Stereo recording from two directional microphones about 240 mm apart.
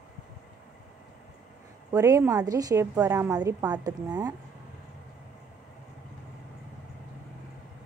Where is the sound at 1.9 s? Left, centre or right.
Centre.